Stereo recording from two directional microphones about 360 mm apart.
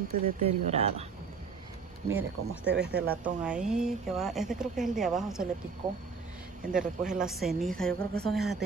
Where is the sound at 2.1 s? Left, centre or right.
Centre.